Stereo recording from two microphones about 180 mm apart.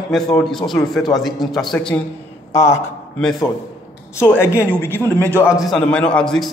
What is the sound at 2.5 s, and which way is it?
Speech, 15° left (ahead or behind).